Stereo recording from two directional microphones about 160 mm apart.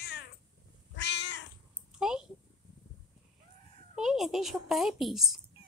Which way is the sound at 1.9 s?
5° right (ahead or behind).